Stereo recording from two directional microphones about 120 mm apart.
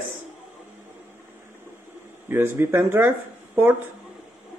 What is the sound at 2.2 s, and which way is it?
Speech, 20° right (ahead or behind).